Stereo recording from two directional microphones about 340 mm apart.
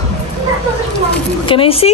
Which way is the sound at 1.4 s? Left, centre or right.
Centre.